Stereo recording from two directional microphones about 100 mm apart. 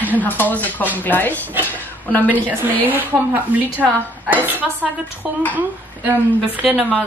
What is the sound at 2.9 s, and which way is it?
Speech, 20° right (ahead or behind).